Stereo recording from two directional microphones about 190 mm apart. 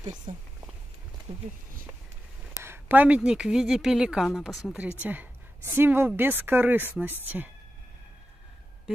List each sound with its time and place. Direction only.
0.3 s speech: 35° right (ahead or behind)
2.6 s a woman's voice: 10° right (ahead or behind)